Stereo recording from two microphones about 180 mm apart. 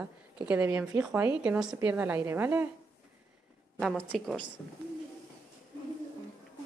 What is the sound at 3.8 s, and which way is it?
Speech, centre (ahead or behind).